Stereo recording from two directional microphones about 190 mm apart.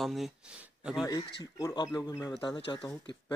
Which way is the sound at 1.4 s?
20° left (ahead or behind).